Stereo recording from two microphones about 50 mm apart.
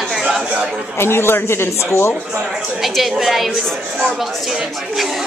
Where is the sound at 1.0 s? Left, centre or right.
Left.